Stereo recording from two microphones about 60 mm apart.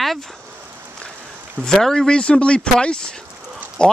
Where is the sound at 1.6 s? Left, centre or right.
Centre.